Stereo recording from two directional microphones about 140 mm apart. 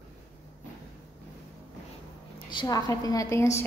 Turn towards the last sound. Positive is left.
turn(degrees=20)  # may be behind; listen again after turning